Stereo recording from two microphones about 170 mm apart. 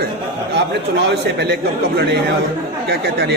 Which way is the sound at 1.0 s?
90° right.